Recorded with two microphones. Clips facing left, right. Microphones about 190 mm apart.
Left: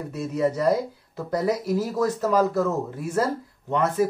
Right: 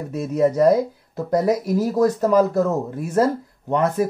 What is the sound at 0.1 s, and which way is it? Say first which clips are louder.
Speech: right 5 dB; 45° right (ahead or behind).